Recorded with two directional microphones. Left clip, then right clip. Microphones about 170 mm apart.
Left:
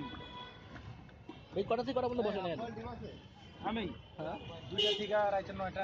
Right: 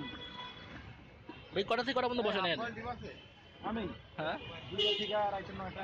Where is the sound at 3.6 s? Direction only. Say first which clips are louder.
Left 1 dB; 5° left (ahead or behind).